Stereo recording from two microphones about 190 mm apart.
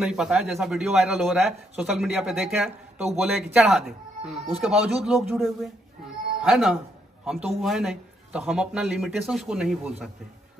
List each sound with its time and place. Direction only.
0.0 s a man's voice: centre (ahead or behind)